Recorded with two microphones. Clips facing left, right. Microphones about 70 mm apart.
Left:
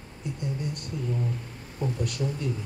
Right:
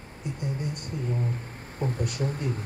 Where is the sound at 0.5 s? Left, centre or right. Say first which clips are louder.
Even; right.